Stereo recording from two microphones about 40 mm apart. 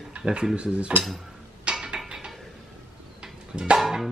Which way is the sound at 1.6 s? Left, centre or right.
Right.